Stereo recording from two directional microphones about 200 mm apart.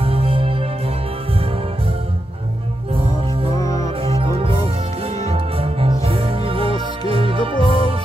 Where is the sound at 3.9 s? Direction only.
30° right (ahead or behind).